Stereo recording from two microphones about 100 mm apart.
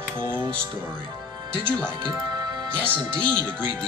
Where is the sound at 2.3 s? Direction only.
45° right (ahead or behind).